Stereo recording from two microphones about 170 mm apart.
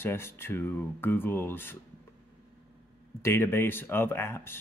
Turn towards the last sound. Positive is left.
turn(degrees=15)  # may be behind; listen again after turning